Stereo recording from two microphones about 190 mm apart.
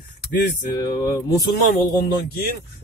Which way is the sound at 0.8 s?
15° left (ahead or behind).